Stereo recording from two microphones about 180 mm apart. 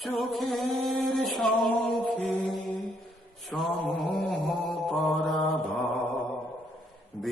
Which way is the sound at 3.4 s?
Centre (ahead or behind).